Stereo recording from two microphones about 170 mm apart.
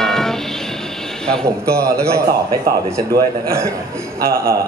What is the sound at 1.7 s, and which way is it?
A man's voice, 15° right (ahead or behind).